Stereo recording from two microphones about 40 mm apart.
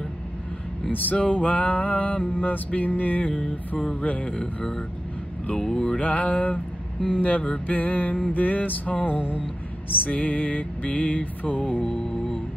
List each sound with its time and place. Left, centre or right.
1.1 s music: left
3.3 s music: left
5.6 s mantra: centre
5.9 s music: left
12.0 s music: left